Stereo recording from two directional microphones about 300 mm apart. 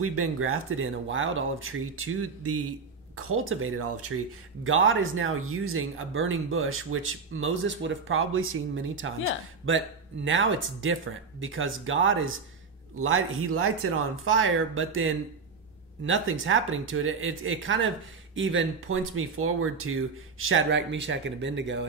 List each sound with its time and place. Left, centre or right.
0.0 s speech: right